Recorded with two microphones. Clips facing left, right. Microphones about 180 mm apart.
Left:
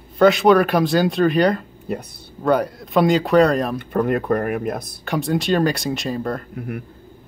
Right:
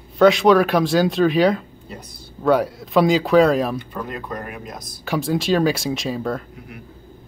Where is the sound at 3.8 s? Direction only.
60° left (ahead or behind).